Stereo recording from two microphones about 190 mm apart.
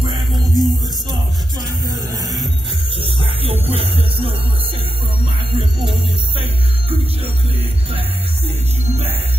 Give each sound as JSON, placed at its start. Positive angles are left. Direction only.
{"t": 0.0, "sound": "music", "side_deg": -20}
{"t": 0.4, "sound": "music", "side_deg": 0}
{"t": 3.0, "sound": "music", "side_deg": -30}
{"t": 5.6, "sound": "music", "side_deg": -25}